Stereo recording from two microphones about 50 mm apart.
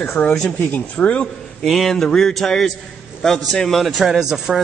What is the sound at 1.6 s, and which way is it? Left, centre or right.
Speech, centre.